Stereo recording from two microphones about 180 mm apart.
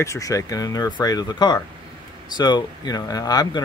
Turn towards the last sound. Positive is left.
turn(degrees=20)  # may be behind; listen again after turning